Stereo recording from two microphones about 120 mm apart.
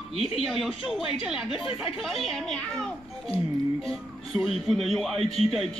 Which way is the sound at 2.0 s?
Centre (ahead or behind).